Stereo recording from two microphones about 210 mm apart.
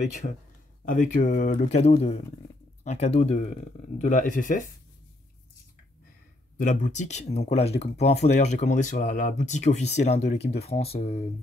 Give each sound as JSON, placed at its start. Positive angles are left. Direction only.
{"t": 0.0, "sound": "speech", "side_deg": 35}
{"t": 6.6, "sound": "speech", "side_deg": 35}